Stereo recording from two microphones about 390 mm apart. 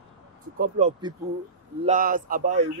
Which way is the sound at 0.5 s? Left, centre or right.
Centre.